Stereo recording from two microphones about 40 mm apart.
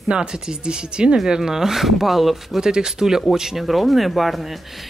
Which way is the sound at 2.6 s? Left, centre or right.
Centre.